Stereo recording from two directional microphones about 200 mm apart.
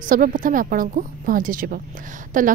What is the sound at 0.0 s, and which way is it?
A woman's voice, 45° right (ahead or behind).